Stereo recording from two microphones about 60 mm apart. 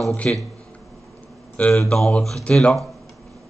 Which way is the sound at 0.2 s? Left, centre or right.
Left.